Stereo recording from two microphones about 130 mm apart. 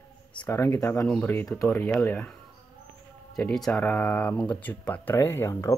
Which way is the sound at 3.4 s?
5° left (ahead or behind).